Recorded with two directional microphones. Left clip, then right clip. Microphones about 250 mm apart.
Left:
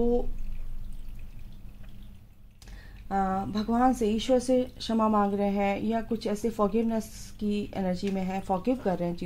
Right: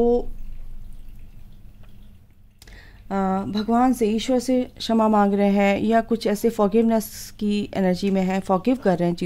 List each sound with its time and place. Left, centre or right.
2.6 s a woman's voice: right